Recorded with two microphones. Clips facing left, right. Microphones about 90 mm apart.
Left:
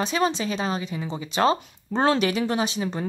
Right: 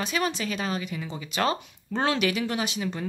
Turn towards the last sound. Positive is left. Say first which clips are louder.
# left 4 dB
turn(degrees=30)  # may be behind; listen again after turning